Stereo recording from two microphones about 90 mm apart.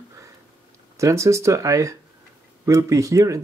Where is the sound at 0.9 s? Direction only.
35° right (ahead or behind).